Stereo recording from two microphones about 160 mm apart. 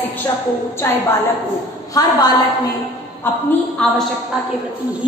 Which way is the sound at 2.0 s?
25° left (ahead or behind).